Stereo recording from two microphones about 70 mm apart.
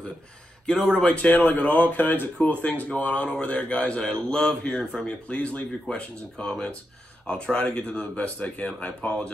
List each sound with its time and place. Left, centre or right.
0.7 s speech: centre
0.9 s a man's voice: centre